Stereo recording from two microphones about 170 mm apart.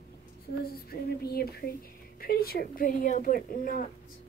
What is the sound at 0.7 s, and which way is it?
Speech, 65° left (ahead or behind).